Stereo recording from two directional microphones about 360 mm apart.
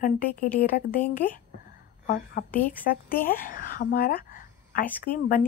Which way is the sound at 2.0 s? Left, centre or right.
Left.